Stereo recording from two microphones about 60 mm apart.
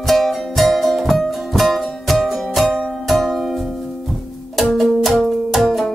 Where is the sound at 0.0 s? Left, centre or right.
Centre.